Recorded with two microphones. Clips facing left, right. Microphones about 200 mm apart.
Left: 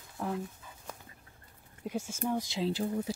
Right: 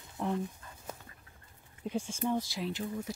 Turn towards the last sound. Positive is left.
turn(degrees=35)  # may be behind; listen again after turning